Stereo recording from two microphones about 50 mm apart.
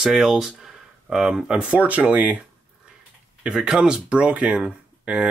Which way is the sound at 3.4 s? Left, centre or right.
Centre.